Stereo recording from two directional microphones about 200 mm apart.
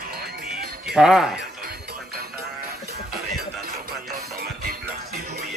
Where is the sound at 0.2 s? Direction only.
50° right (ahead or behind).